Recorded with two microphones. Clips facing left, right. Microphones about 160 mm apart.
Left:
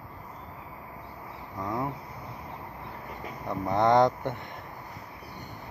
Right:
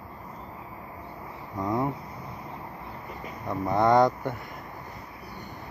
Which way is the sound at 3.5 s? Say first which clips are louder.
Right 1 dB; 20° left (ahead or behind).